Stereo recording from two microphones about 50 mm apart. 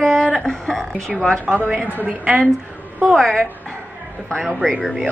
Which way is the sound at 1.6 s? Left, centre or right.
Right.